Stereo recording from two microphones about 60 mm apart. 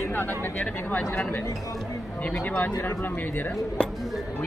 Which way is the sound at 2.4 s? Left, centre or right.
Left.